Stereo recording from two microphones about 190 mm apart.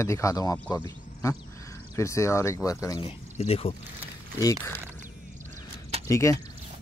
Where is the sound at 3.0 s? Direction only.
30° left (ahead or behind).